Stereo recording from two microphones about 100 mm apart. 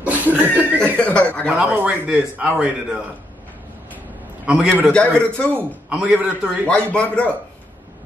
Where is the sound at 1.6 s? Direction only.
10° right (ahead or behind).